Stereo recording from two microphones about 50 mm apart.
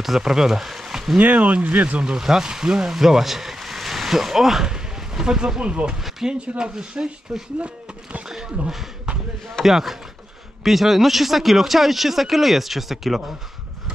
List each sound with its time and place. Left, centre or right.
0.0 s speech: centre
1.1 s speech: right
6.2 s speech: centre
8.3 s a sound: centre
9.6 s speech: centre